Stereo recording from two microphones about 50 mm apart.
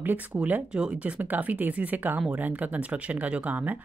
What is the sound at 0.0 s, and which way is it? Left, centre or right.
Speech, right.